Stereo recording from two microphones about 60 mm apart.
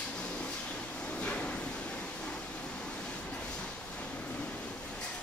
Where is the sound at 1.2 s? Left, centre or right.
Centre.